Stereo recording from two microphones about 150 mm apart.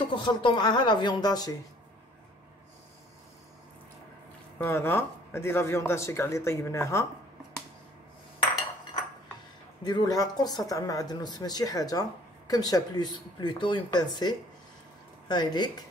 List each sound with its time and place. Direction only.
0.1 s speech: 30° left (ahead or behind)
4.6 s speech: 15° left (ahead or behind)
9.8 s speech: 25° left (ahead or behind)